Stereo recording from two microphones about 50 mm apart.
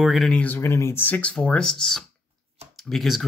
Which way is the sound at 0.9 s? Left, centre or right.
Left.